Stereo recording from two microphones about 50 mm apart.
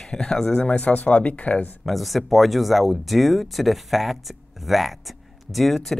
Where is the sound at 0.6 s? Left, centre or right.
Left.